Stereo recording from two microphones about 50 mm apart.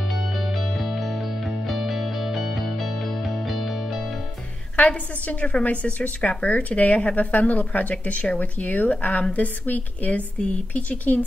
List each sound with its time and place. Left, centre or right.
0.1 s music: centre
4.7 s a woman's voice: left